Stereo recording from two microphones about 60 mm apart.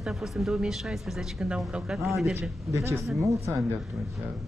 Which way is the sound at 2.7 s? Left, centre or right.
Right.